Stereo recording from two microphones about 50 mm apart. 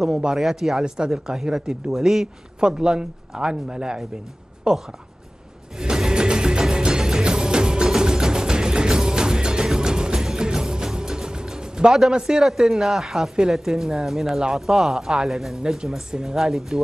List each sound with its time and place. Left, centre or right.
0.0 s speech: centre
0.8 s speech: centre
5.8 s music: centre
12.1 s speech: centre